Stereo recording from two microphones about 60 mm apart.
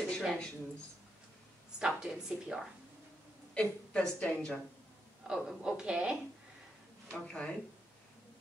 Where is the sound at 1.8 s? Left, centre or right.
Centre.